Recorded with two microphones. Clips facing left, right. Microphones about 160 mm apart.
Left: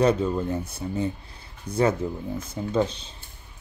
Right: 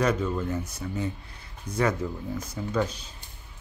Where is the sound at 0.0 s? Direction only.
30° left (ahead or behind).